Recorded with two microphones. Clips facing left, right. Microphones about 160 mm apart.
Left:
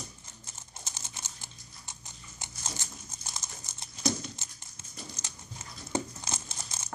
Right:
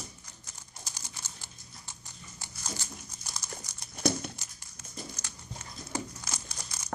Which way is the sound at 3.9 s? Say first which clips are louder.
Right 2 dB; 60° right (ahead or behind).